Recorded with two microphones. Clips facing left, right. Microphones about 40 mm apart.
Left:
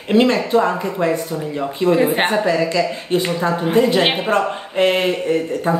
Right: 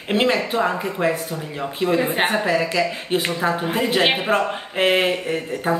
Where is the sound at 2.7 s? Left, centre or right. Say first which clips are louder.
Left 3 dB; centre.